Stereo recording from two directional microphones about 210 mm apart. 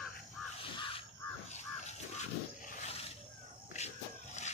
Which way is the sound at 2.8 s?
30° left (ahead or behind).